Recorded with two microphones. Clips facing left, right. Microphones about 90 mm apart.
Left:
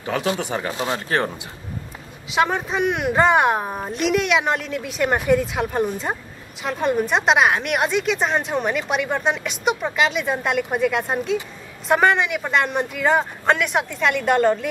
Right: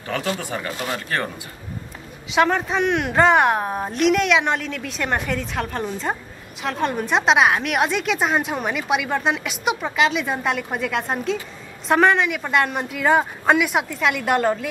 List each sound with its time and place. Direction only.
0.0 s speech: 20° left (ahead or behind)
2.2 s a woman's voice: 5° left (ahead or behind)